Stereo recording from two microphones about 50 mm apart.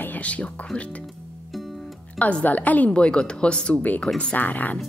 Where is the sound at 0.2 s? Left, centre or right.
Left.